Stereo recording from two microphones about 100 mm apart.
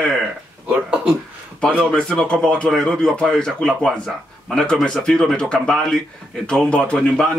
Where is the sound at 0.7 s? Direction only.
10° right (ahead or behind).